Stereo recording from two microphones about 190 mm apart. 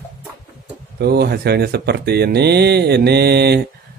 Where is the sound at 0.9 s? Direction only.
55° right (ahead or behind).